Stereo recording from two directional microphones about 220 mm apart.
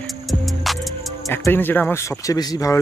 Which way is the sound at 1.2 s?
10° left (ahead or behind).